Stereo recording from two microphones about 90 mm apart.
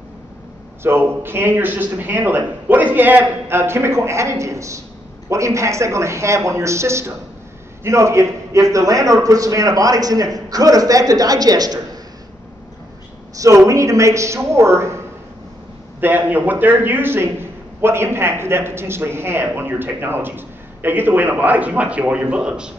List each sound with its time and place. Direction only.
0.8 s a man's voice: 25° right (ahead or behind); by 12.0 s 45° right (ahead or behind)
13.4 s a man's voice: 40° right (ahead or behind)
16.0 s a man's voice: 20° right (ahead or behind)